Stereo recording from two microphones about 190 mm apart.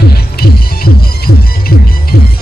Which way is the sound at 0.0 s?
55° left (ahead or behind).